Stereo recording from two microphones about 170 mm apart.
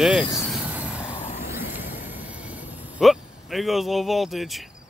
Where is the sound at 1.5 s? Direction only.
10° right (ahead or behind).